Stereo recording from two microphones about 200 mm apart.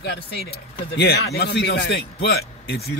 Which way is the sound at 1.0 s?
55° left (ahead or behind).